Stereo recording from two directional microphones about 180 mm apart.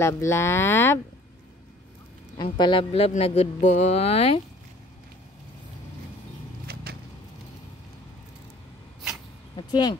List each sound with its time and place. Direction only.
0.0 s speech: 15° left (ahead or behind)
2.3 s speech: 25° left (ahead or behind)
6.7 s vehicle: 60° right (ahead or behind)
9.6 s speech: 25° left (ahead or behind)